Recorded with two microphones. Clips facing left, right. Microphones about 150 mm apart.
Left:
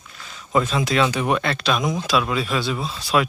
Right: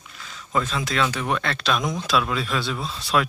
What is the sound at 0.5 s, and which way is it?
Speech, 15° left (ahead or behind).